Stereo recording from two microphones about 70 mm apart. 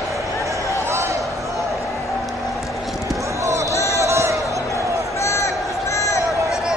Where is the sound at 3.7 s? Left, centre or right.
Left.